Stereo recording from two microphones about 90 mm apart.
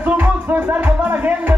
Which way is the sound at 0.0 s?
20° right (ahead or behind).